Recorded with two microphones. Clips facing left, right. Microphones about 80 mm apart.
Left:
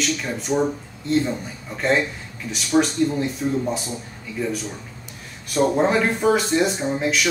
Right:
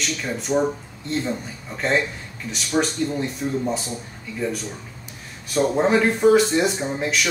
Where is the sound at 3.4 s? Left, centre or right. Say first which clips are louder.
Left 2 dB; centre.